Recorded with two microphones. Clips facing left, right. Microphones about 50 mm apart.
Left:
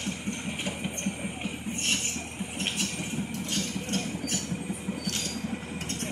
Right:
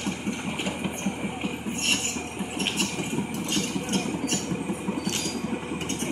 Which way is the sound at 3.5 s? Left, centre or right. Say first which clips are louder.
Right 4 dB; right.